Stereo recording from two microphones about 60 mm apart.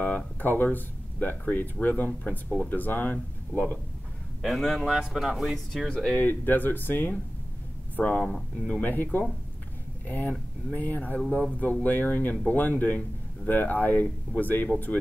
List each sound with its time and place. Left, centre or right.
0.0 s speech: left
4.4 s speech: centre
4.8 s speech: centre
6.1 s speech: left
8.2 s speech: centre
8.8 s speech: left